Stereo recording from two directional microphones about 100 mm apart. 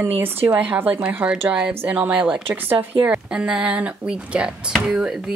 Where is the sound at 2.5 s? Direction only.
20° right (ahead or behind).